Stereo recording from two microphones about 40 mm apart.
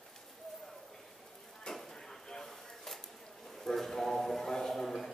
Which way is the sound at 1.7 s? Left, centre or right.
Centre.